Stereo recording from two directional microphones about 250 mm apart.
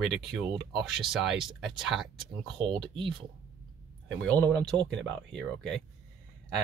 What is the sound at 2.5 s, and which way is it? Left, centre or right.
Speech, centre.